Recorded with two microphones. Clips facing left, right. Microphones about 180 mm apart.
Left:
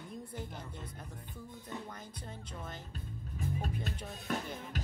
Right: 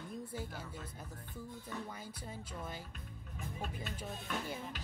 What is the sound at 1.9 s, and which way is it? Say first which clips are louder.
Speech: even; 5° right (ahead or behind).